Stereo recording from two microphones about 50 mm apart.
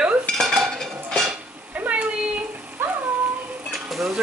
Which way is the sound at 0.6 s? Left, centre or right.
Centre.